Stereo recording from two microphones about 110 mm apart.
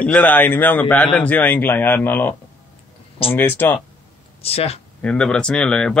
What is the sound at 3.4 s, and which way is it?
Speech, 20° left (ahead or behind).